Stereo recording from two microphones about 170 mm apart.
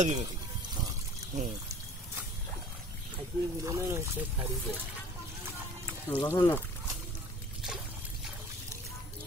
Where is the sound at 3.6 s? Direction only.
20° right (ahead or behind).